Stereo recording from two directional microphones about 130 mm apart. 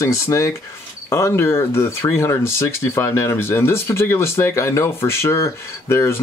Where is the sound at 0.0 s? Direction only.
25° left (ahead or behind).